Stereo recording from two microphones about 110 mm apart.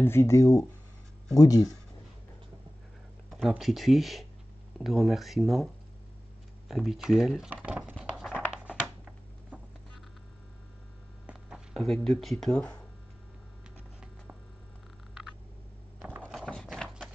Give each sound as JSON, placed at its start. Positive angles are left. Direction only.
{"t": 0.0, "sound": "speech", "side_deg": 25}
{"t": 3.3, "sound": "speech", "side_deg": 0}
{"t": 6.7, "sound": "speech", "side_deg": 0}
{"t": 8.8, "sound": "a sound", "side_deg": -15}
{"t": 11.7, "sound": "speech", "side_deg": 5}
{"t": 16.0, "sound": "mechanisms", "side_deg": -15}
{"t": 16.3, "sound": "horse", "side_deg": 5}